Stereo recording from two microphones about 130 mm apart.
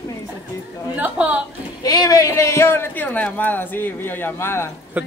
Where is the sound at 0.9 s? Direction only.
10° right (ahead or behind).